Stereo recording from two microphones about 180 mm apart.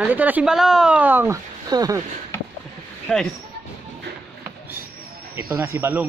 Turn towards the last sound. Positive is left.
turn(degrees=-10)  # may be behind; listen again after turning